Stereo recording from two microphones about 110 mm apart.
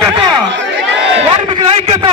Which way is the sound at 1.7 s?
55° right (ahead or behind).